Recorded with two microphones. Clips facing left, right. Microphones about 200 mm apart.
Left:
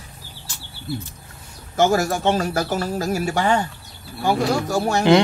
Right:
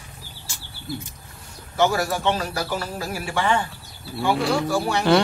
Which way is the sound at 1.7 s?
45° left (ahead or behind).